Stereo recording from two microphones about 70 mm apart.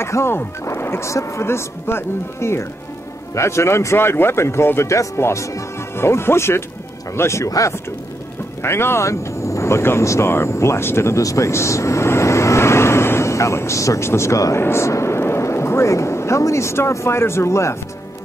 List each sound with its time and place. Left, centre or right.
0.0 s speech: left
8.6 s speech: left